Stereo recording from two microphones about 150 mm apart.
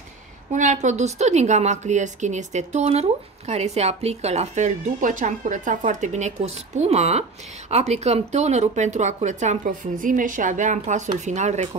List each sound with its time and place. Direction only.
0.5 s speech: 55° right (ahead or behind)